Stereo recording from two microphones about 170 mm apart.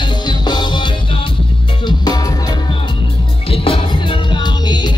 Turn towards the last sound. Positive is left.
turn(degrees=25)  # may be behind; listen again after turning